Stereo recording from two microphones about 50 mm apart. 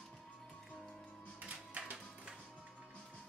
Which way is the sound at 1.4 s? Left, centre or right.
Right.